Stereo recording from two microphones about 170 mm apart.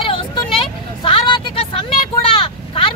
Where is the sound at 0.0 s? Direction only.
30° left (ahead or behind).